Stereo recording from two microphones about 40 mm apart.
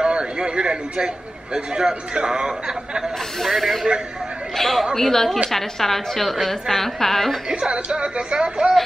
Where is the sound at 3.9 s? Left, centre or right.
Centre.